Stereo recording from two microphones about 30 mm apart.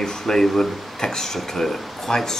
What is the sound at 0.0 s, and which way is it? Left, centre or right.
Speech, centre.